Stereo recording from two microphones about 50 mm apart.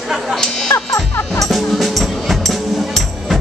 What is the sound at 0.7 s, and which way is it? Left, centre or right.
Music, left.